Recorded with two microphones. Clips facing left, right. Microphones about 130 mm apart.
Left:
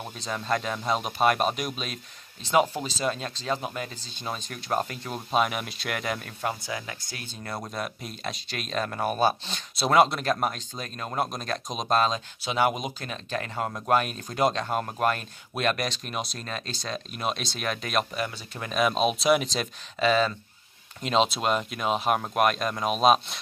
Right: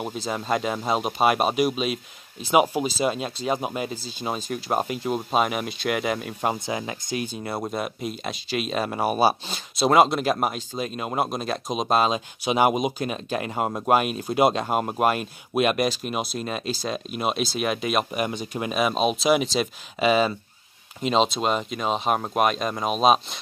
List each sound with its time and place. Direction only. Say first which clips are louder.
0.1 s speech: even; 5° right (ahead or behind)
6.7 s speech: right 7 dB; 20° right (ahead or behind)
7.7 s speech: right 5 dB; 5° right (ahead or behind)
18.1 s speech: right 6 dB; 20° right (ahead or behind)
18.8 s speech: right 1 dB; centre (ahead or behind)
21.0 s speech: right 3 dB; centre (ahead or behind)